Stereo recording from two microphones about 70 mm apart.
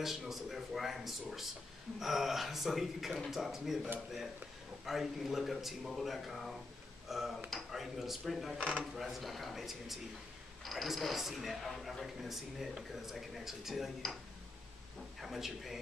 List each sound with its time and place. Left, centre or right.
0.0 s a sound: centre
2.0 s a man's voice: centre
8.5 s speech: centre
8.9 s a man's voice: centre
15.1 s a man's voice: centre